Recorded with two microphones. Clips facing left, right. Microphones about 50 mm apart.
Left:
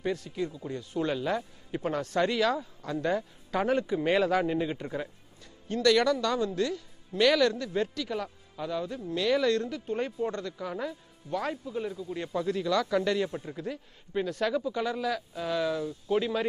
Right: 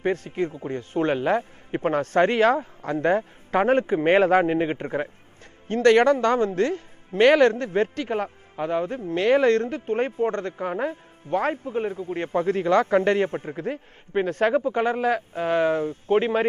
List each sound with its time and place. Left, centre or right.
0.0 s speech: right